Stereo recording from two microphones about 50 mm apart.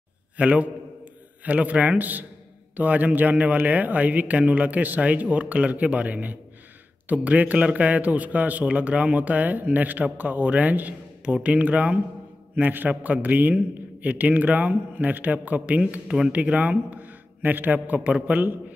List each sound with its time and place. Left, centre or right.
0.4 s a man's voice: right
11.2 s speech: right
15.6 s speech: right
16.3 s a man's voice: right